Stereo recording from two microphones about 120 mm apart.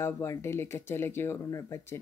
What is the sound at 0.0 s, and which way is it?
Speech, 20° left (ahead or behind).